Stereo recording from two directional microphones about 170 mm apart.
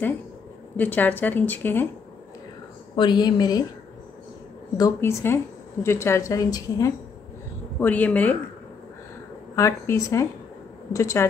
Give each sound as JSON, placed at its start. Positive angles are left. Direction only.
{"t": 0.7, "sound": "a woman's voice", "side_deg": 10}
{"t": 3.0, "sound": "a woman's voice", "side_deg": 25}
{"t": 4.7, "sound": "a woman's voice", "side_deg": 20}
{"t": 7.8, "sound": "a woman's voice", "side_deg": 10}
{"t": 9.6, "sound": "a woman's voice", "side_deg": 15}